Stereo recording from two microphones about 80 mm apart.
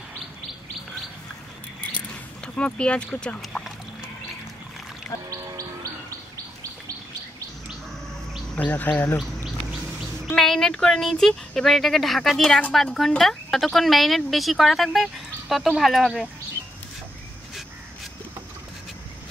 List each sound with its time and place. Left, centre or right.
1.8 s a sound: centre
3.3 s speech: centre
5.3 s chirp: right
8.5 s speech: left
10.3 s speech: centre